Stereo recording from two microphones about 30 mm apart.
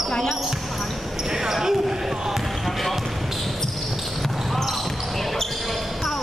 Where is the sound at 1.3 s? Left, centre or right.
Centre.